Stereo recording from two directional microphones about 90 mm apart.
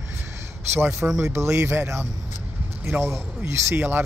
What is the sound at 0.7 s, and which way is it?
Speech, 30° right (ahead or behind).